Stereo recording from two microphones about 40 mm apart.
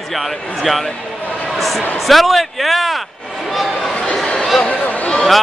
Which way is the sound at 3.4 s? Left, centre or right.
Centre.